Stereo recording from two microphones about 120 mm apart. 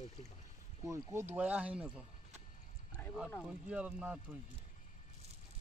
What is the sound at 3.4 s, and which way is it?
Speech, 10° right (ahead or behind).